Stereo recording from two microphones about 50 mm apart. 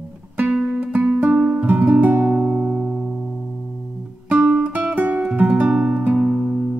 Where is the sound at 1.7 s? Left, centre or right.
Right.